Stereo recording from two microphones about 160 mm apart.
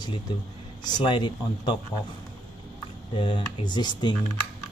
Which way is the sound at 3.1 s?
30° left (ahead or behind).